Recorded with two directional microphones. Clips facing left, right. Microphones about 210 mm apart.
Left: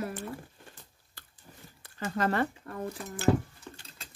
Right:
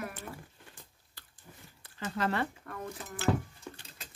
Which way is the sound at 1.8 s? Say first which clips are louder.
Left 3 dB; 45° left (ahead or behind).